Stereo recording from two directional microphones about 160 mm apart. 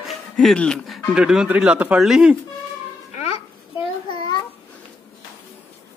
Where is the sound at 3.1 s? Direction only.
40° left (ahead or behind).